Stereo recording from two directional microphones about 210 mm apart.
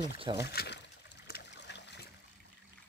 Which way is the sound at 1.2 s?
55° left (ahead or behind).